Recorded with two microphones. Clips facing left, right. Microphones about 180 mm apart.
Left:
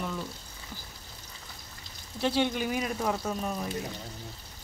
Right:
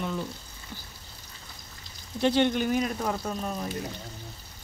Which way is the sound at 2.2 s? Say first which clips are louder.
Right 4 dB; 5° left (ahead or behind).